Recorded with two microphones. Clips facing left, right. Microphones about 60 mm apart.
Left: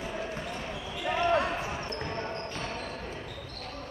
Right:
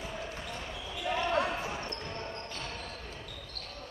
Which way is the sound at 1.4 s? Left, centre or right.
Centre.